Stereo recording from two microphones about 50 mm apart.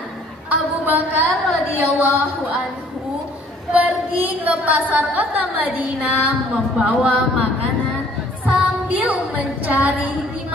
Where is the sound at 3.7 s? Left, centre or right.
Right.